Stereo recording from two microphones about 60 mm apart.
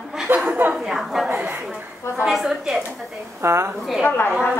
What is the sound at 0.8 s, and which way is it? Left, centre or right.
A woman's voice, centre.